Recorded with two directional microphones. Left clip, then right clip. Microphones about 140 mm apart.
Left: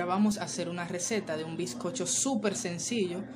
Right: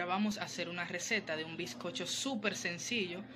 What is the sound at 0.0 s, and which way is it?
A woman's voice, 15° left (ahead or behind).